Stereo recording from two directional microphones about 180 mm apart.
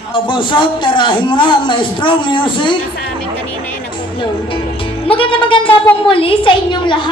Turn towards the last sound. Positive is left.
turn(degrees=25)  # may be behind; listen again after turning